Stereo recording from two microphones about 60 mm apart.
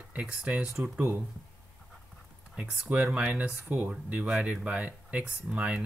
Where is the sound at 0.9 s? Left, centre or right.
Right.